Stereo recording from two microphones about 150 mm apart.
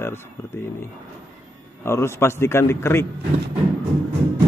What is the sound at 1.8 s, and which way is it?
Speech, 15° left (ahead or behind).